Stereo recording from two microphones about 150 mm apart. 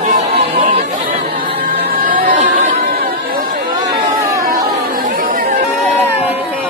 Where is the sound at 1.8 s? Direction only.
80° right.